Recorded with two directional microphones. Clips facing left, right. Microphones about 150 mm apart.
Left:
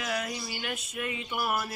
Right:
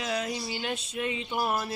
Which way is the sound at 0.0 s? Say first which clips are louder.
Right 2 dB; 25° right (ahead or behind).